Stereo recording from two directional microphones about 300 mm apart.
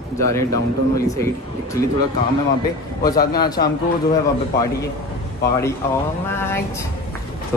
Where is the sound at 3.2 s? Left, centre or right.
Left.